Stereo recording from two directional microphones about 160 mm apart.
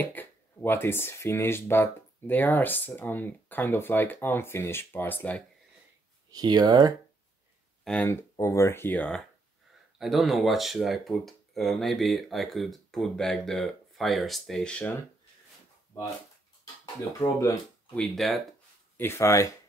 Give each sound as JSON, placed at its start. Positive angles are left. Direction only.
{"t": 0.0, "sound": "speech", "side_deg": 10}
{"t": 6.3, "sound": "speech", "side_deg": -25}
{"t": 7.8, "sound": "speech", "side_deg": 5}
{"t": 8.1, "sound": "speech", "side_deg": 15}
{"t": 16.8, "sound": "speech", "side_deg": 20}
{"t": 17.9, "sound": "speech", "side_deg": 5}
{"t": 18.9, "sound": "speech", "side_deg": 15}